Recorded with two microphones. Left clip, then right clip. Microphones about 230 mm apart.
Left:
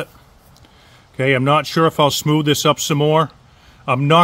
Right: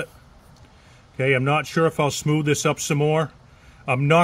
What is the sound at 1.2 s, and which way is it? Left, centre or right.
Speech, left.